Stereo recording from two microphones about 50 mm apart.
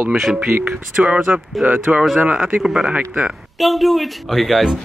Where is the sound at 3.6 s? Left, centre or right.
Centre.